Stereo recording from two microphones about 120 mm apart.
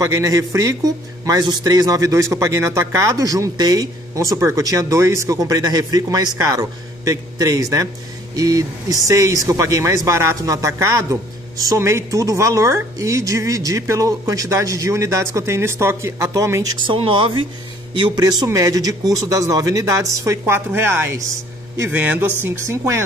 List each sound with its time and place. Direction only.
0.0 s speech: 25° right (ahead or behind)
16.8 s a man's voice: 45° right (ahead or behind); by 23.0 s 25° right (ahead or behind)